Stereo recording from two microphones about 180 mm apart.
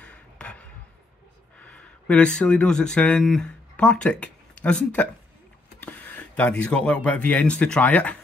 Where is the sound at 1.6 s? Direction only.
5° left (ahead or behind).